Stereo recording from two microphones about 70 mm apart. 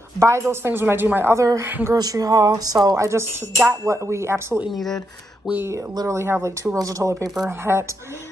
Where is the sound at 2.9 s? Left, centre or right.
Right.